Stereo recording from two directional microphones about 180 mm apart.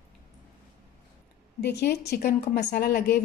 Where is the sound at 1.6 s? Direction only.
70° left (ahead or behind).